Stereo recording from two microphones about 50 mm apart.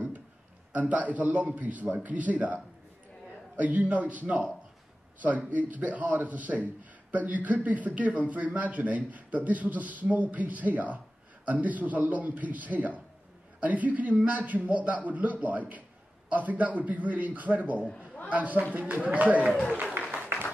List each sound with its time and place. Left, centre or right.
0.7 s a man's voice: right
5.5 s a man's voice: right
20.0 s a sound: right